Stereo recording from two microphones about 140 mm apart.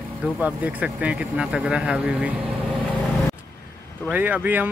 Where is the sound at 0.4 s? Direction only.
10° right (ahead or behind).